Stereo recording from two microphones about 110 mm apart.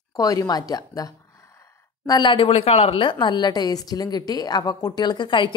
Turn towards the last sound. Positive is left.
turn(degrees=45)  # may be behind; listen again after turning